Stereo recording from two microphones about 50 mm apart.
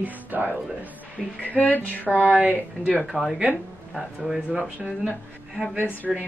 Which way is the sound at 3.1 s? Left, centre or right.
Centre.